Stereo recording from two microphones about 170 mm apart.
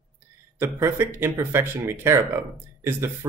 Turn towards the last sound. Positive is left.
turn(degrees=-15)  # may be behind; listen again after turning